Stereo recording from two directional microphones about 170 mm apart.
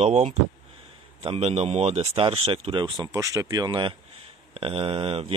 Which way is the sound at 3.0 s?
20° right (ahead or behind).